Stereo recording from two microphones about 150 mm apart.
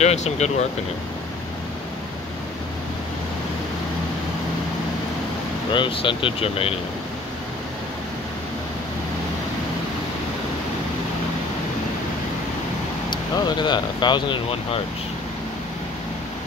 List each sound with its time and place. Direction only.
0.0 s speech: 50° left (ahead or behind)
5.7 s speech: 35° left (ahead or behind)
13.4 s speech: 30° left (ahead or behind)